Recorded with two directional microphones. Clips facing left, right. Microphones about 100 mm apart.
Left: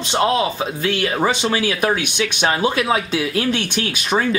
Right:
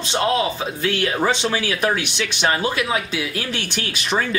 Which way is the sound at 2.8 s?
30° left (ahead or behind).